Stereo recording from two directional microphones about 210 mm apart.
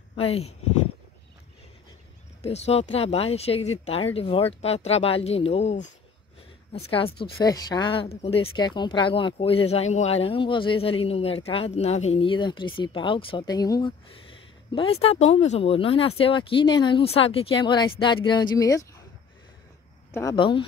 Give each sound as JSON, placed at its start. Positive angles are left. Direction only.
{"t": 0.1, "sound": "speech", "side_deg": 30}
{"t": 2.4, "sound": "speech", "side_deg": 30}
{"t": 20.1, "sound": "a sound", "side_deg": 15}
{"t": 20.3, "sound": "speech", "side_deg": 25}